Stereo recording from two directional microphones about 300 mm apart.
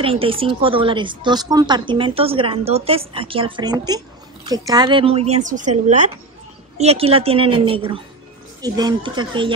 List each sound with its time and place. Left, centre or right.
0.0 s a woman's voice: centre